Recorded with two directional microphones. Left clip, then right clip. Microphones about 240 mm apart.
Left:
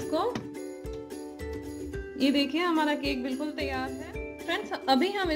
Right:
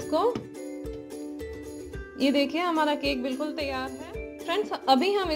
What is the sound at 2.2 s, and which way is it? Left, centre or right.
A woman's voice, centre.